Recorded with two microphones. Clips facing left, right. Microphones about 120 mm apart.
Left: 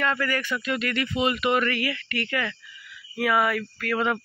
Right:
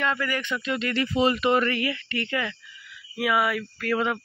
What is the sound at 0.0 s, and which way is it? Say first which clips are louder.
Speech: left 1 dB; 15° right (ahead or behind).